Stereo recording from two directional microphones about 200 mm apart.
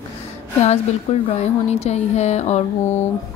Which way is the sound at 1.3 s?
30° left (ahead or behind).